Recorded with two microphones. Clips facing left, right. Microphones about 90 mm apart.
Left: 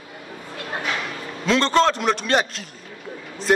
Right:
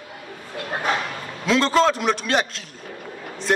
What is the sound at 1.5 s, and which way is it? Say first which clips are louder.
A man's voice: even; centre (ahead or behind).